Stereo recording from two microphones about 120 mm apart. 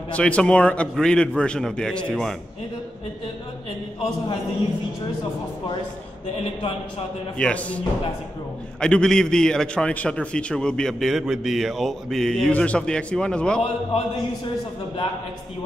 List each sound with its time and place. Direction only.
0.1 s a man's voice: 10° left (ahead or behind)
6.3 s a man's voice: 55° left (ahead or behind)
7.3 s a man's voice: 10° left (ahead or behind)
8.8 s a man's voice: 5° left (ahead or behind)
13.6 s a man's voice: 50° left (ahead or behind)